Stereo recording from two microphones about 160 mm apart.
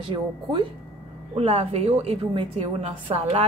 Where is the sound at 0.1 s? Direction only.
30° right (ahead or behind).